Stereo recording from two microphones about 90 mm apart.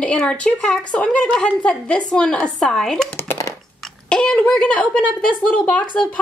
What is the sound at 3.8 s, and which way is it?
A woman's voice, 10° left (ahead or behind).